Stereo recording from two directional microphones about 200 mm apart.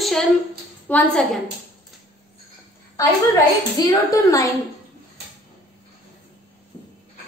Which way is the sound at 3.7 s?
15° left (ahead or behind).